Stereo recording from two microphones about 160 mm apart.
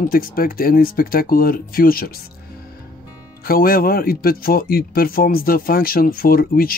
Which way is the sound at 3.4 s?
65° left (ahead or behind).